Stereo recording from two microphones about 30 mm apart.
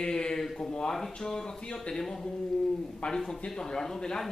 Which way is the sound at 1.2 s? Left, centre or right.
Left.